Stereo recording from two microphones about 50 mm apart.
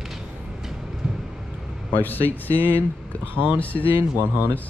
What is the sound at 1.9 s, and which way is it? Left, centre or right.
Speech, left.